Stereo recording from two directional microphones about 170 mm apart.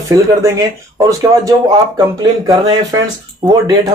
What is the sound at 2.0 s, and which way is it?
Speech, 20° right (ahead or behind).